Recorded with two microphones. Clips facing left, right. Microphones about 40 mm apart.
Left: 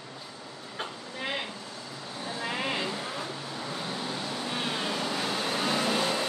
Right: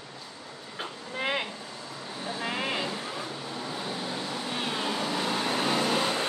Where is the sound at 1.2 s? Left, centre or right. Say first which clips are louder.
Right 4 dB; right.